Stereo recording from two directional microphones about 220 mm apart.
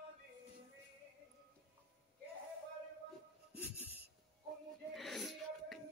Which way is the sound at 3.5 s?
5° right (ahead or behind).